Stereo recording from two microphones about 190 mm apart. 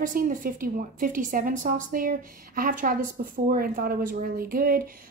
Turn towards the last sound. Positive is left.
turn(degrees=-50)  # may be behind; listen again after turning